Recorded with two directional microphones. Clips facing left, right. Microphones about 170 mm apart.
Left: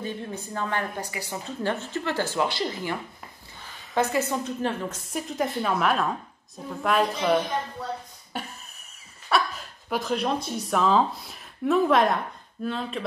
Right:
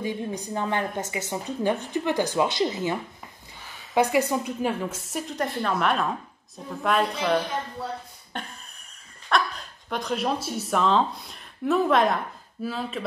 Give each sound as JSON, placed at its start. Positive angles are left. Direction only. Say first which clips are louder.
{"t": 0.0, "sound": "a woman's voice", "louder": "right 3 dB", "side_deg": -15}
{"t": 8.3, "sound": "a sound", "louder": "left 1 dB", "side_deg": 5}
{"t": 9.3, "sound": "a woman's voice", "louder": "even", "side_deg": 5}